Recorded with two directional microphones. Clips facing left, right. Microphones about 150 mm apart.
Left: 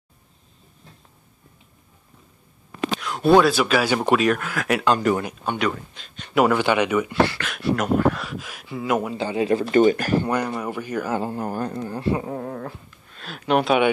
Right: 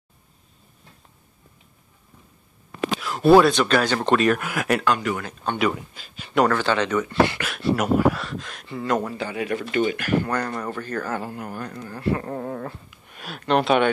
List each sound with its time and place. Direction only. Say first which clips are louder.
3.0 s speech: right 2 dB; centre (ahead or behind)
4.4 s speech: right 1 dB; 10° right (ahead or behind)
4.8 s speech: left 4 dB; 35° left (ahead or behind)
5.2 s speech: left 1 dB; 10° left (ahead or behind)
5.6 s speech: right 1 dB; 5° right (ahead or behind)
6.4 s speech: left 2 dB; 15° left (ahead or behind)
7.2 s speech: even; 15° right (ahead or behind); by 9.1 s 5° left (ahead or behind)
9.1 s speech: left 5 dB; 25° left (ahead or behind)
10.2 s speech: left 2 dB; 15° left (ahead or behind)
11.1 s speech: left 5 dB; 25° left (ahead or behind)
12.2 s speech: even; centre (ahead or behind)
13.1 s a sound: right 1 dB; 10° right (ahead or behind)
13.4 s speech: even; 5° left (ahead or behind)